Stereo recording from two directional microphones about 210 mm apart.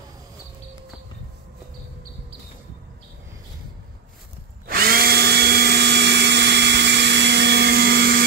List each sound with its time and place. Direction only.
4.6 s drill: 45° right (ahead or behind)